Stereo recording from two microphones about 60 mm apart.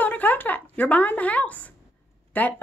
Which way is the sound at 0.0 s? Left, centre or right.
Left.